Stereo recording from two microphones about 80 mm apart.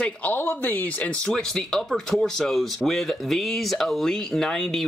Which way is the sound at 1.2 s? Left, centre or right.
Centre.